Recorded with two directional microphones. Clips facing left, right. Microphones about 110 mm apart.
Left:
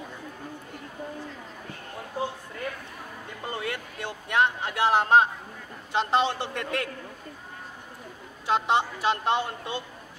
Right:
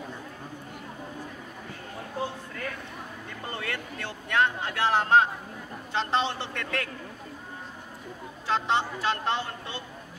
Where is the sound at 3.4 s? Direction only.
20° left (ahead or behind).